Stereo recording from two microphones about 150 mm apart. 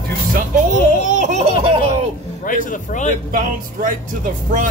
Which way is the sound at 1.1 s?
55° right (ahead or behind).